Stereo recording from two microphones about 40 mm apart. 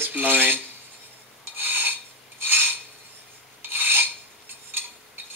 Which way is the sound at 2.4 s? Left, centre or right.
Right.